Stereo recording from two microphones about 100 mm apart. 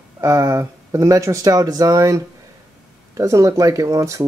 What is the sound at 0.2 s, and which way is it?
Speech, 30° right (ahead or behind).